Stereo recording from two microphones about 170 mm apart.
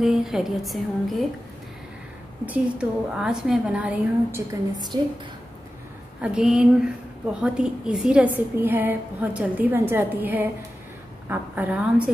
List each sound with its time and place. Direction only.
0.0 s speech: centre (ahead or behind)
2.4 s a woman's voice: 5° right (ahead or behind)
4.9 s a woman's voice: 25° right (ahead or behind)
6.2 s a woman's voice: 5° right (ahead or behind)